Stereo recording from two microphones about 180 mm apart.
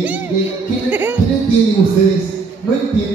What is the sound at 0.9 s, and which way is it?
Speech, 10° right (ahead or behind).